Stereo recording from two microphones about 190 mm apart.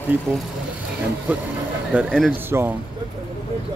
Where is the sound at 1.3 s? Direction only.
10° right (ahead or behind).